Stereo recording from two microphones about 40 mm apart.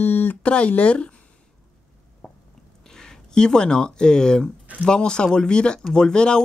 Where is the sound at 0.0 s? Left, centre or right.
Left.